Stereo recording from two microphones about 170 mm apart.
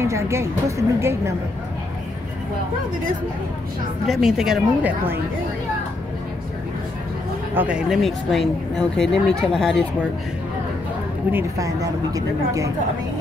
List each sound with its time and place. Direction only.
0.0 s a woman's voice: 15° right (ahead or behind)
4.1 s a woman's voice: centre (ahead or behind)
7.5 s a woman's voice: 5° right (ahead or behind)
11.3 s a woman's voice: 20° right (ahead or behind)